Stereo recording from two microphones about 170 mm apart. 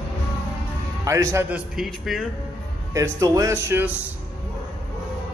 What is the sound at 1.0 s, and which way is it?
Speech, 20° right (ahead or behind).